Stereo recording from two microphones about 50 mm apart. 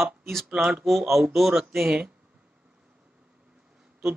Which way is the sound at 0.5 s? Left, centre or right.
Centre.